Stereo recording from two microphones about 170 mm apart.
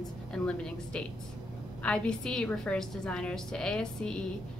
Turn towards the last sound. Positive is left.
turn(degrees=5)  # may be behind; listen again after turning